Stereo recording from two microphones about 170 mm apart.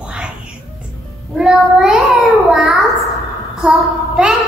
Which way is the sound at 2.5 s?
Centre (ahead or behind).